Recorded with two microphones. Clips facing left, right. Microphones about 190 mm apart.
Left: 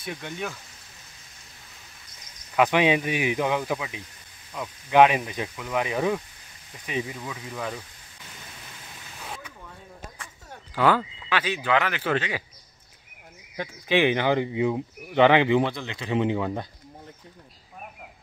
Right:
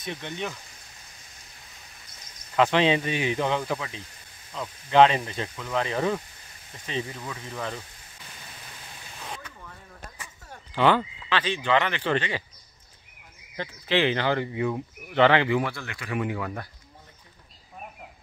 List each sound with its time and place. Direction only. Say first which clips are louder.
0.0 s speech: even; 10° left (ahead or behind)
2.5 s speech: left 1 dB; 10° left (ahead or behind)
9.2 s a sound: even; 5° left (ahead or behind)
10.5 s speech: even; 5° left (ahead or behind)
13.6 s speech: left 2 dB; 15° left (ahead or behind)